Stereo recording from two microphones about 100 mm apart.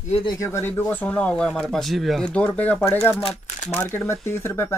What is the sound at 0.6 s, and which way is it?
Speech, 15° left (ahead or behind).